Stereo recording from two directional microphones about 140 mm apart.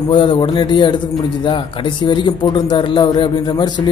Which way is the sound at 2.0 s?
35° left (ahead or behind).